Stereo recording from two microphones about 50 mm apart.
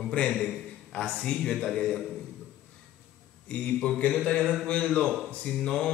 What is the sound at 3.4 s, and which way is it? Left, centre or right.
A man's voice, left.